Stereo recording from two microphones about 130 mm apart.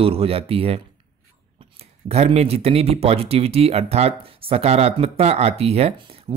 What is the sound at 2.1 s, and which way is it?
Speech, 55° right (ahead or behind).